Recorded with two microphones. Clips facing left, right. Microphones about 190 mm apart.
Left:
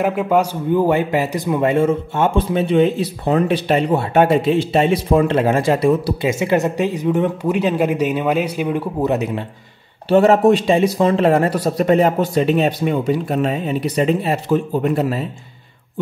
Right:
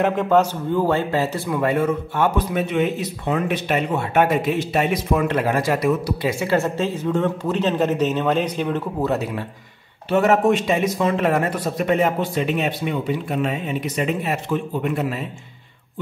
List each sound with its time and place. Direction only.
0.0 s a man's voice: 10° left (ahead or behind)
10.0 s speech: 30° left (ahead or behind)